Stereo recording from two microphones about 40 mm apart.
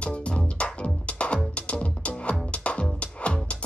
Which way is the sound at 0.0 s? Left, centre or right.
Left.